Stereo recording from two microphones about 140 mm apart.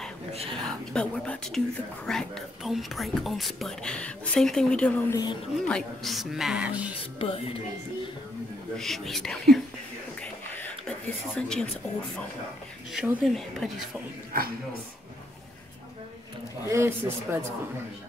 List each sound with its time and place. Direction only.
0.3 s whispering: 45° right (ahead or behind)
0.7 s speech: 5° left (ahead or behind)
5.1 s a woman's voice: 30° left (ahead or behind)
5.7 s speech: 5° left (ahead or behind)
7.2 s speech: 40° left (ahead or behind)
8.7 s speech: centre (ahead or behind)
10.2 s a sound: 10° left (ahead or behind)
12.9 s speech: centre (ahead or behind)
14.3 s speech: 90° right
16.6 s a man's voice: 20° right (ahead or behind)